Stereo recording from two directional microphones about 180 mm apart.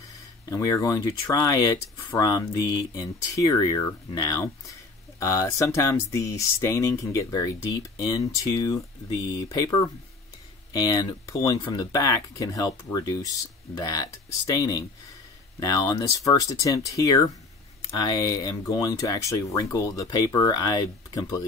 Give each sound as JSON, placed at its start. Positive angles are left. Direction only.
{"t": 0.5, "sound": "speech", "side_deg": 20}